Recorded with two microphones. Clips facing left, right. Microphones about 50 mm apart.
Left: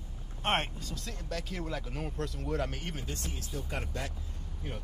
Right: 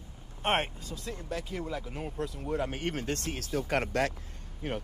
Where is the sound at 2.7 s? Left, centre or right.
Right.